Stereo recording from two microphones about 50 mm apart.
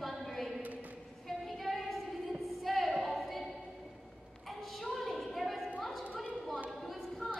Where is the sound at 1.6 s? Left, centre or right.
Centre.